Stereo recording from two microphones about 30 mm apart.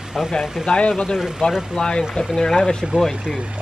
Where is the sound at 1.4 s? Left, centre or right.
Left.